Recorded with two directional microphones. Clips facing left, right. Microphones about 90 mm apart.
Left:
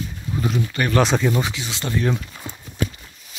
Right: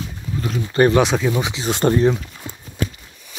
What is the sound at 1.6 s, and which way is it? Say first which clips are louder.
Speech: right 9 dB; 45° right (ahead or behind).